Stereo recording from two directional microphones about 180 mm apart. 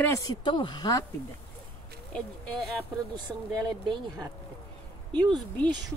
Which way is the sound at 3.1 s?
20° right (ahead or behind).